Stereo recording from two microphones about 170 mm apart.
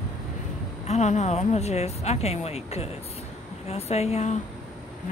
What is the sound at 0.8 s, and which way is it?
A woman's voice, 45° left (ahead or behind).